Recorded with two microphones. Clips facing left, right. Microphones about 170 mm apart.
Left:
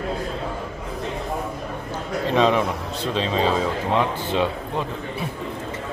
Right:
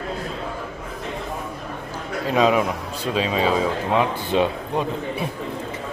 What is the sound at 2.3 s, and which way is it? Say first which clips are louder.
A man's voice: right 1 dB; 10° right (ahead or behind).